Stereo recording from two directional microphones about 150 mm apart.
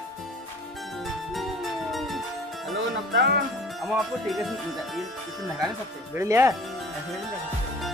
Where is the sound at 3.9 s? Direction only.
Centre (ahead or behind).